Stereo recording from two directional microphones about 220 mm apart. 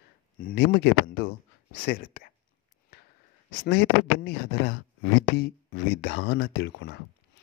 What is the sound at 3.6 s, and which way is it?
Speech, 50° left (ahead or behind).